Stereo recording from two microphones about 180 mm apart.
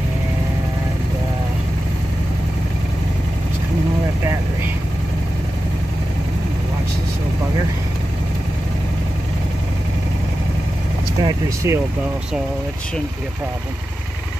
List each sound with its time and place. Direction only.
11.2 s speech: 15° right (ahead or behind)